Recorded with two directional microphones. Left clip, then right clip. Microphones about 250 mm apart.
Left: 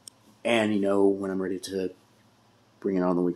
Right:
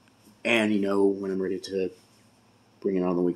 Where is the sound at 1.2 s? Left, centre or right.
Centre.